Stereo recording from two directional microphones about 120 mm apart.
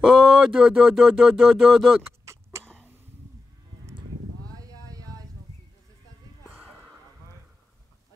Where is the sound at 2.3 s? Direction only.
25° right (ahead or behind).